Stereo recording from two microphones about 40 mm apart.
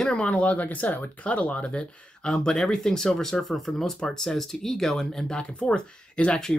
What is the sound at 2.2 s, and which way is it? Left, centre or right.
Speech, centre.